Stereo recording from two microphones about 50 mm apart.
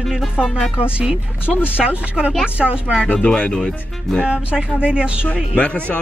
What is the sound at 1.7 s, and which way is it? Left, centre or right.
Speech, right.